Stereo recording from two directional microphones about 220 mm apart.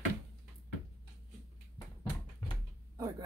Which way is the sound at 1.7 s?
15° left (ahead or behind).